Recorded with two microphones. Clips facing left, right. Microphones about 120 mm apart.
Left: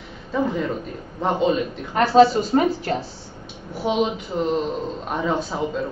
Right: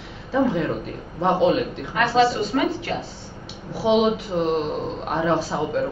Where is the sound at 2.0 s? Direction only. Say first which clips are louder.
Left 4 dB; 40° left (ahead or behind).